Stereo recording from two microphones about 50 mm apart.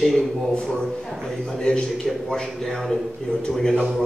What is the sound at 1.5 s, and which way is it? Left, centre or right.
A man's voice, centre.